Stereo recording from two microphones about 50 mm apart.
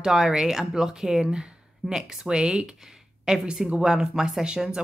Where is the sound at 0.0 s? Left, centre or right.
Centre.